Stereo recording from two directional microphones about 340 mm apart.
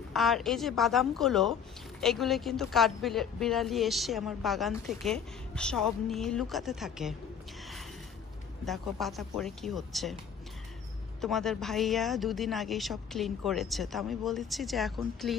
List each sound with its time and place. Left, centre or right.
0.1 s a woman's voice: centre
8.6 s a woman's voice: centre
11.1 s a woman's voice: centre